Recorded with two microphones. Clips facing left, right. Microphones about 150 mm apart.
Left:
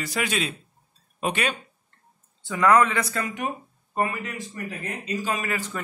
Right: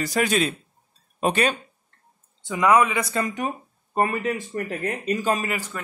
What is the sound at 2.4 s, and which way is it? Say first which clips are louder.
Speech: even; 15° right (ahead or behind).